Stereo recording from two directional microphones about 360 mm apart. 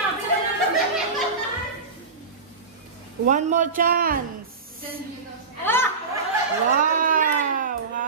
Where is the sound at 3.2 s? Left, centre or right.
Right.